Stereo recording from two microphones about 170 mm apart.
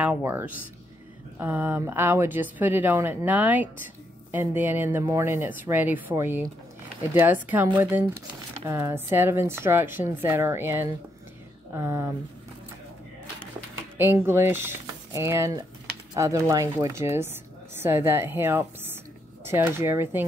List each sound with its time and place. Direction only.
0.0 s speech: 10° right (ahead or behind)
13.9 s speech: 10° right (ahead or behind)